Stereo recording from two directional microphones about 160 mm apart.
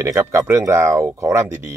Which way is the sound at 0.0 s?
15° right (ahead or behind).